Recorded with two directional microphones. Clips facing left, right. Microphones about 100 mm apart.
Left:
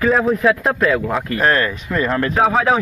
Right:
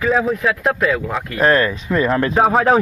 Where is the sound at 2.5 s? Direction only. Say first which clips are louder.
Right 2 dB; 40° right (ahead or behind).